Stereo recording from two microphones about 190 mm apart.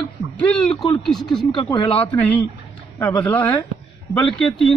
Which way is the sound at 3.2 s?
10° left (ahead or behind).